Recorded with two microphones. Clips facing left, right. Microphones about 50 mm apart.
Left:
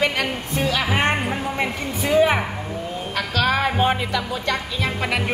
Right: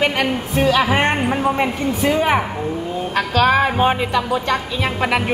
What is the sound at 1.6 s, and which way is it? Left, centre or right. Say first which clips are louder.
Speech: right 6 dB; centre.